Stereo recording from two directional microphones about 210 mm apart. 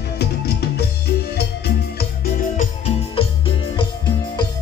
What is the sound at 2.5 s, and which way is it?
Music, 30° left (ahead or behind).